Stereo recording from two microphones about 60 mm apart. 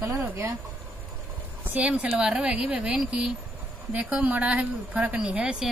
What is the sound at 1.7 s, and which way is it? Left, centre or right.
A woman's voice, right.